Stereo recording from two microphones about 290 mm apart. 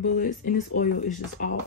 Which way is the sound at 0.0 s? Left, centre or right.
Left.